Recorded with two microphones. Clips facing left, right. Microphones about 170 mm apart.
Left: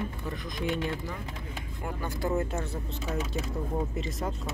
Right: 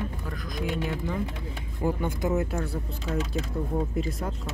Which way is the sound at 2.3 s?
5° right (ahead or behind).